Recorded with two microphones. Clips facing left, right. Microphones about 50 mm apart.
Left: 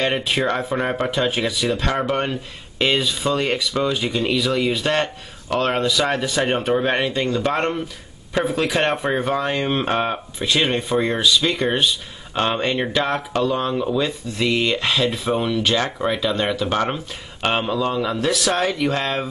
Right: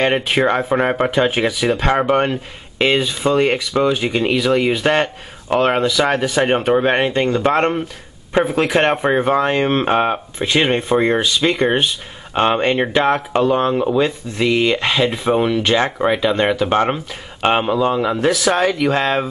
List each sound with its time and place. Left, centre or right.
0.0 s speech: right